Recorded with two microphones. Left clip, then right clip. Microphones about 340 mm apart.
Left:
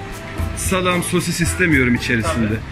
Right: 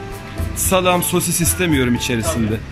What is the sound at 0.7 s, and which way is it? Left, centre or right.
Speech, centre.